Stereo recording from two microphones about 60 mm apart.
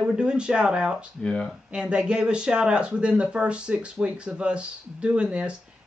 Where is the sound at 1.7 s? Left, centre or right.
Centre.